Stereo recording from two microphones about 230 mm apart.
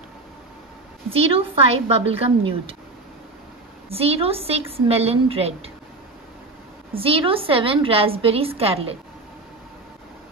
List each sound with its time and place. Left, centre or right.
1.1 s a woman's voice: right
3.9 s a woman's voice: right
6.9 s a woman's voice: right